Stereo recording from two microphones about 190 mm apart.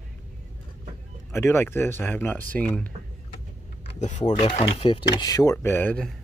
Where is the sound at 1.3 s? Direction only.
15° left (ahead or behind).